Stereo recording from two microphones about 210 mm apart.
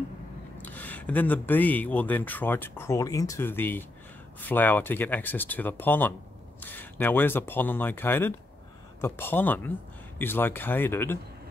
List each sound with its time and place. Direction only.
0.6 s speech: 10° left (ahead or behind)